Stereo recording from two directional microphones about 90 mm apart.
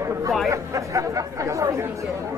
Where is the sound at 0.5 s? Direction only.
35° right (ahead or behind).